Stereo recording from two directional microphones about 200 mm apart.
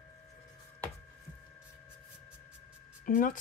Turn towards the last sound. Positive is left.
turn(degrees=40)  # may be behind; listen again after turning